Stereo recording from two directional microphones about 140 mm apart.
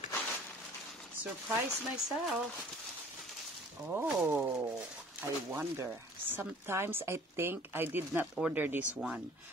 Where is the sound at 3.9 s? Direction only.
15° right (ahead or behind).